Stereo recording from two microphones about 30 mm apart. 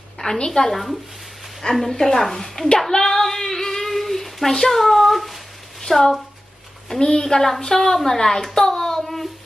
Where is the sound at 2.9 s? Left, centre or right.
Centre.